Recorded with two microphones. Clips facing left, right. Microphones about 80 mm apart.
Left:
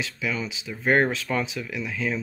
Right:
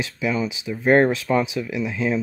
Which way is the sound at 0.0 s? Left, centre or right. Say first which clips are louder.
Right 6 dB; right.